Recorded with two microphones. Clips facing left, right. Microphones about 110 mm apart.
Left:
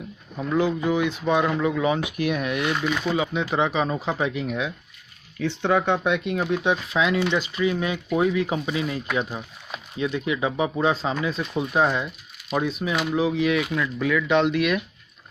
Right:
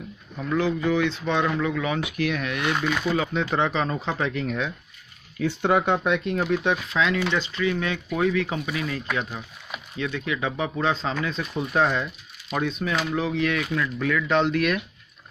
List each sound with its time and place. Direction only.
0.4 s speech: 15° left (ahead or behind)
5.4 s speech: 10° right (ahead or behind)
6.0 s speech: centre (ahead or behind)